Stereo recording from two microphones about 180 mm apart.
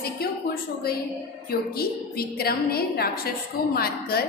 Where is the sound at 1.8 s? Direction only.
60° left (ahead or behind).